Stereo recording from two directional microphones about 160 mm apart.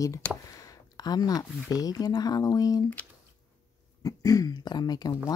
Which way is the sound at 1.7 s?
25° left (ahead or behind).